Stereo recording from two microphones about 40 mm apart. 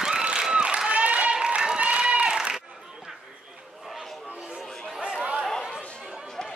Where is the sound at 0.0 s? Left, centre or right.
Centre.